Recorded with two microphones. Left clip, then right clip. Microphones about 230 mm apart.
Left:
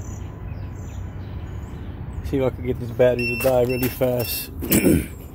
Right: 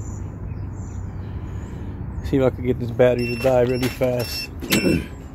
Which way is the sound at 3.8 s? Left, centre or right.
Centre.